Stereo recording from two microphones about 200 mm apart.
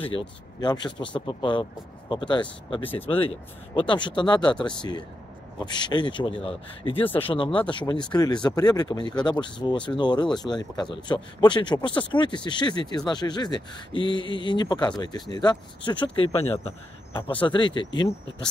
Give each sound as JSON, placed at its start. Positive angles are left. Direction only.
{"t": 0.0, "sound": "speech", "side_deg": 25}